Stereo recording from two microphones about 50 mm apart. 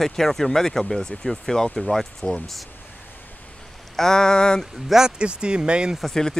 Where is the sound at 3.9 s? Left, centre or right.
Centre.